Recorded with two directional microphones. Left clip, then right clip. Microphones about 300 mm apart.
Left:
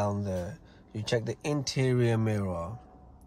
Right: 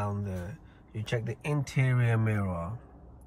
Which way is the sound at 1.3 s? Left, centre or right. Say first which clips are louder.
Left 2 dB; centre.